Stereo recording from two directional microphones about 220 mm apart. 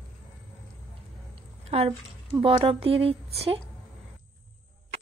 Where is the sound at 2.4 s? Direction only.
25° right (ahead or behind).